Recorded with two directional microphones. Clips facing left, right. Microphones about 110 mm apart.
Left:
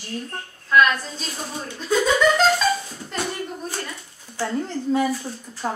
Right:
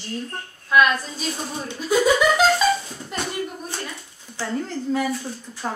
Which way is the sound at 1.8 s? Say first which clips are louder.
Right 1 dB; 10° right (ahead or behind).